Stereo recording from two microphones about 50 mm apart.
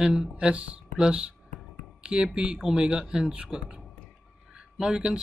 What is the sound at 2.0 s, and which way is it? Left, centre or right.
Speech, centre.